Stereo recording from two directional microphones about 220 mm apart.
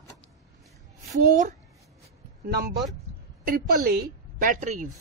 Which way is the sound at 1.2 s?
35° right (ahead or behind).